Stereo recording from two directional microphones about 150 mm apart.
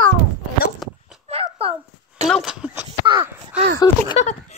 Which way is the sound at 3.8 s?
25° left (ahead or behind).